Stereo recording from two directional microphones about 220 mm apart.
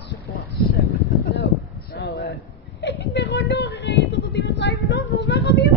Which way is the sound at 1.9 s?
50° left (ahead or behind).